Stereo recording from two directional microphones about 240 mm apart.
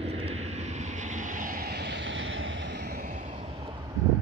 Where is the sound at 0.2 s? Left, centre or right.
Right.